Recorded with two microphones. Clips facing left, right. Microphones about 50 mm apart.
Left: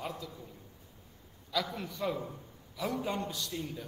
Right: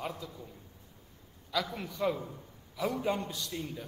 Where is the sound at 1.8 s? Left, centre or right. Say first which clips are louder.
Right 2 dB; centre.